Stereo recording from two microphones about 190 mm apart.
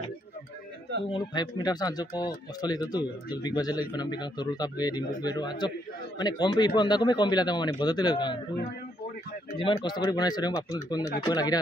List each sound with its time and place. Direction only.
1.1 s speech: 25° left (ahead or behind)
9.6 s speech: 25° left (ahead or behind)